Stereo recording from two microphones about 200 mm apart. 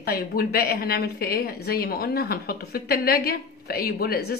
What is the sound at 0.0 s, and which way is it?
A woman's voice, 50° left (ahead or behind).